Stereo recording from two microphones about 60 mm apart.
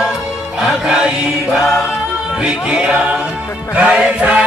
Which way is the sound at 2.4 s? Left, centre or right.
Centre.